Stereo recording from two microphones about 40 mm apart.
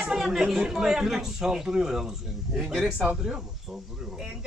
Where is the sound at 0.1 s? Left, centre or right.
Centre.